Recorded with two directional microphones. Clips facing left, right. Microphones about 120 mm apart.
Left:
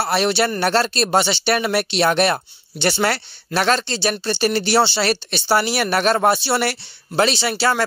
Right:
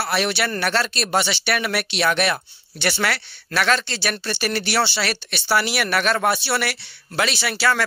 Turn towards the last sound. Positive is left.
turn(degrees=30)  # may be behind; listen again after turning